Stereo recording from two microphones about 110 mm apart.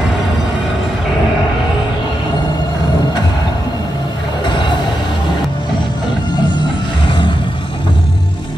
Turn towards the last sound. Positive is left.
turn(degrees=50)  # may be behind; listen again after turning